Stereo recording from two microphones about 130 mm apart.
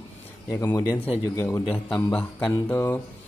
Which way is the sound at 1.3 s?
25° left (ahead or behind).